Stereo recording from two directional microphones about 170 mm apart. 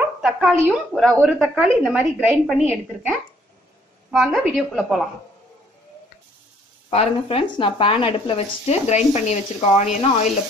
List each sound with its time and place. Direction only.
0.2 s a woman's voice: 5° right (ahead or behind)
4.1 s a woman's voice: centre (ahead or behind)
6.9 s speech: 35° left (ahead or behind)